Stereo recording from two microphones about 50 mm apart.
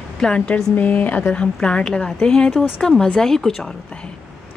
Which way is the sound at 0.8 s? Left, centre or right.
Left.